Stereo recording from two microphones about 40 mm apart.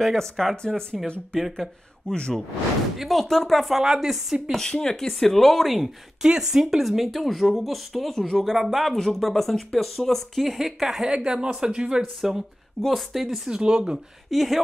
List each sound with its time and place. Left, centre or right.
0.0 s speech: centre
2.0 s speech: centre
3.0 s speech: centre
4.6 s speech: centre
6.2 s speech: centre
11.1 s a woman's voice: right
12.0 s speech: centre
13.5 s speech: centre
14.3 s speech: centre